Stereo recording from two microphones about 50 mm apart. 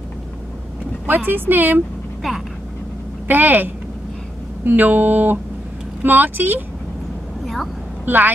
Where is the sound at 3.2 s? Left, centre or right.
Right.